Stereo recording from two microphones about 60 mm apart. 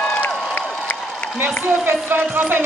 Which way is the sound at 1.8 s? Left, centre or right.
Right.